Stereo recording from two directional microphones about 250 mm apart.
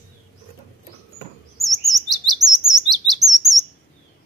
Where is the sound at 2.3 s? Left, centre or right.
Centre.